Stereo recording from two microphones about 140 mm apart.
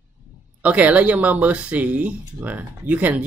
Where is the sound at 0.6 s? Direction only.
10° right (ahead or behind).